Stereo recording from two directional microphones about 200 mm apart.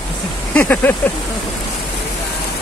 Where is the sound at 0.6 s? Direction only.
10° left (ahead or behind).